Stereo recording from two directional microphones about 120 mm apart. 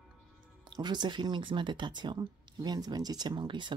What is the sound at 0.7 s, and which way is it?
Speech, 40° right (ahead or behind).